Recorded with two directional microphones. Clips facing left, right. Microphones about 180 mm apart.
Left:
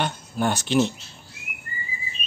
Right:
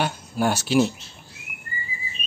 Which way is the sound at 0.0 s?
5° right (ahead or behind).